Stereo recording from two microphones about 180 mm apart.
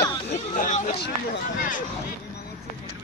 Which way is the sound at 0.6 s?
45° left (ahead or behind).